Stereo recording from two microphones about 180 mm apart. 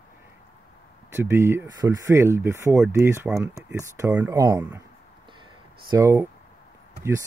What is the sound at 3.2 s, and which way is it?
Speech, 5° right (ahead or behind).